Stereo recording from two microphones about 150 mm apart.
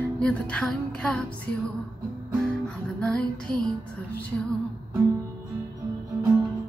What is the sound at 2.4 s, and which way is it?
Music, 5° left (ahead or behind).